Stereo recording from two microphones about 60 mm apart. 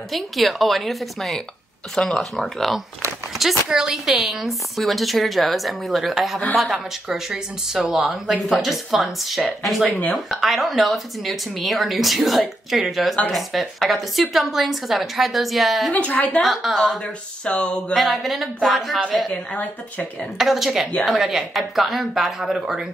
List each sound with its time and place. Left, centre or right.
0.1 s speech: centre
15.9 s speech: left
16.7 s speech: centre
17.9 s speech: centre
19.3 s speech: left
20.3 s speech: centre